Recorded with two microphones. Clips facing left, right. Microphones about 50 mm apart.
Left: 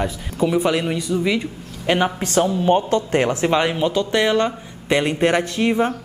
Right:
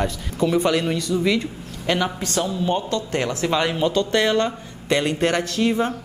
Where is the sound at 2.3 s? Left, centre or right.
Left.